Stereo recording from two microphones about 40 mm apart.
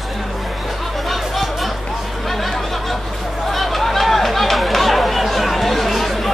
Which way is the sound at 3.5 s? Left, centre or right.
Centre.